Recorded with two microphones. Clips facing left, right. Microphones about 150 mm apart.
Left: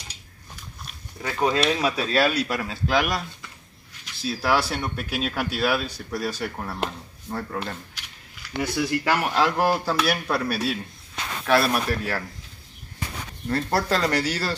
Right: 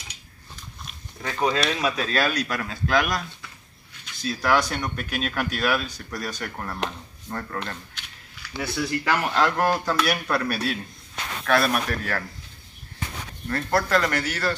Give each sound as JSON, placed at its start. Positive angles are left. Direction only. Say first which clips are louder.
{"t": 0.8, "sound": "a sound", "louder": "left 1 dB", "side_deg": 5}
{"t": 1.7, "sound": "speech", "louder": "left 2 dB", "side_deg": 10}
{"t": 13.5, "sound": "speech", "louder": "even", "side_deg": 35}